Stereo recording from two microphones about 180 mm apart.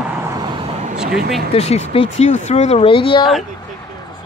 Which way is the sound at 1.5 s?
35° left (ahead or behind).